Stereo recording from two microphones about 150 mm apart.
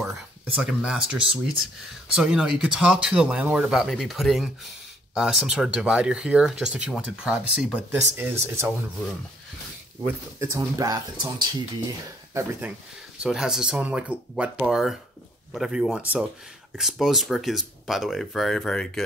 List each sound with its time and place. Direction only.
0.6 s speech: 5° right (ahead or behind)
10.4 s speech: 20° right (ahead or behind)
12.4 s speech: 10° right (ahead or behind); by 19.0 s 5° left (ahead or behind)